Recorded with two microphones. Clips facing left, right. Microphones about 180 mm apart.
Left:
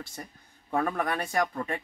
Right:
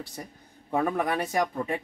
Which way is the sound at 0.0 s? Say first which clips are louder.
Right 2 dB; 15° right (ahead or behind).